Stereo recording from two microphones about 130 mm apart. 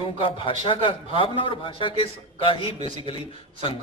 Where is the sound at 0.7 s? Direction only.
40° left (ahead or behind).